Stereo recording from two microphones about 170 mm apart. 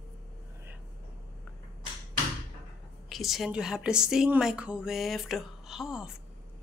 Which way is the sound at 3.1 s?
Centre (ahead or behind).